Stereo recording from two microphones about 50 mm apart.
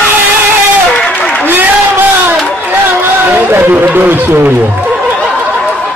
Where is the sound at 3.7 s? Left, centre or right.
Right.